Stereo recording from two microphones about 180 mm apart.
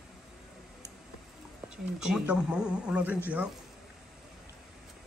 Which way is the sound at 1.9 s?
5° right (ahead or behind).